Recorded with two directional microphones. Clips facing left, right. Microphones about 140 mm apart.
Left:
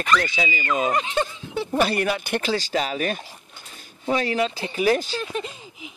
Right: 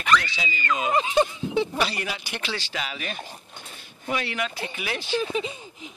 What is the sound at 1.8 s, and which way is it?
Speech, 50° left (ahead or behind).